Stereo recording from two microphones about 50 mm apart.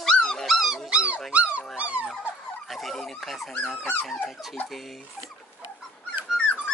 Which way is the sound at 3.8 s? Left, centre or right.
Left.